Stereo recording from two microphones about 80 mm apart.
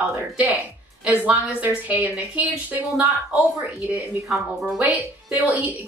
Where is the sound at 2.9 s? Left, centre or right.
Centre.